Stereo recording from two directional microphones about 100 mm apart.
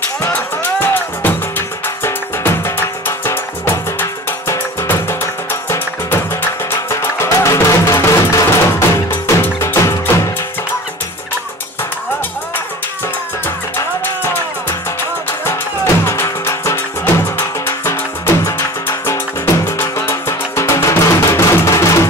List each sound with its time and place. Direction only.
0.3 s music: 20° left (ahead or behind)
14.2 s music: 20° left (ahead or behind)